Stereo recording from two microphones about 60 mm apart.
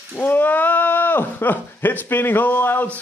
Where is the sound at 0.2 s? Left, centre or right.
Left.